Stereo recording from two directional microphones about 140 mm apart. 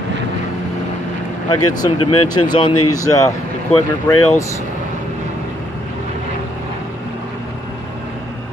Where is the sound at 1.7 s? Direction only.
30° left (ahead or behind).